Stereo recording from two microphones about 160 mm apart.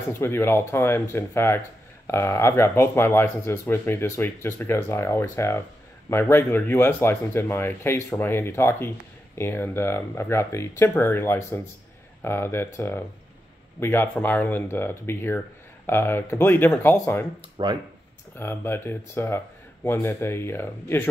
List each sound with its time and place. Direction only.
0.1 s speech: 15° left (ahead or behind)
17.6 s speech: 30° right (ahead or behind)
18.4 s speech: 15° left (ahead or behind)